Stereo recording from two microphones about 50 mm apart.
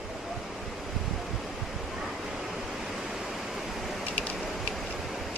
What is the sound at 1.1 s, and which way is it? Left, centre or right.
Waves, centre.